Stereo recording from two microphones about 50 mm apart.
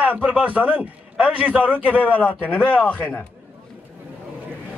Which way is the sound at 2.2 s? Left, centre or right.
Left.